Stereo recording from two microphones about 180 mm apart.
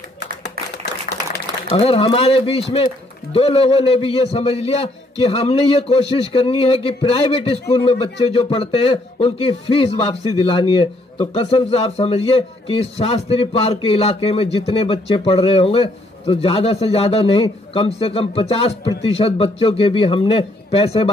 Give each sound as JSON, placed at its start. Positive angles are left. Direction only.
{"t": 1.7, "sound": "a man's voice", "side_deg": 35}